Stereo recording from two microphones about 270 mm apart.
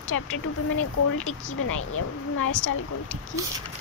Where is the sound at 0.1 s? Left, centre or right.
Left.